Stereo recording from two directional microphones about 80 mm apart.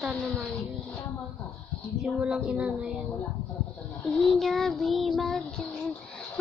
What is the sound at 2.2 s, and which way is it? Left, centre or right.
Speech, centre.